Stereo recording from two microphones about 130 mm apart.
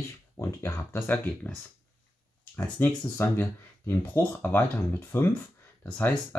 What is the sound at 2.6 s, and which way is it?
Speech, 15° left (ahead or behind).